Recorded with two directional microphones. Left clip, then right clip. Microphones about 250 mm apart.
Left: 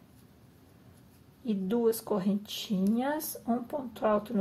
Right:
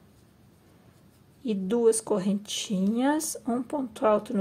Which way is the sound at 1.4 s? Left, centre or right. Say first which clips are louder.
Right 5 dB; right.